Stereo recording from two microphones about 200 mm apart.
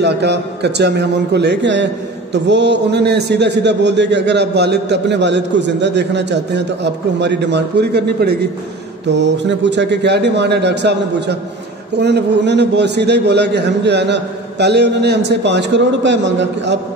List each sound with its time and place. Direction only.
0.0 s a man's voice: 55° right (ahead or behind)